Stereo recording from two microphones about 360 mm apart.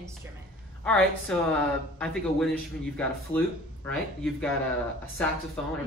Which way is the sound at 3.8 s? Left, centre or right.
Centre.